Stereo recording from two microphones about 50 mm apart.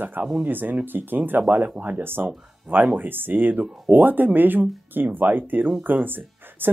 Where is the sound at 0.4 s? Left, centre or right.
Right.